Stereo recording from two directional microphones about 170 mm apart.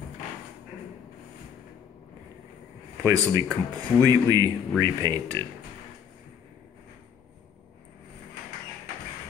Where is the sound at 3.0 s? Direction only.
20° right (ahead or behind).